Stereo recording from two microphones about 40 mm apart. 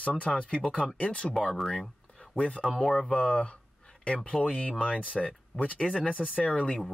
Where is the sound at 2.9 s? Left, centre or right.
Left.